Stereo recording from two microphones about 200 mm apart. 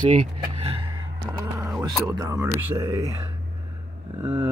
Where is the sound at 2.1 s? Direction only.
15° right (ahead or behind).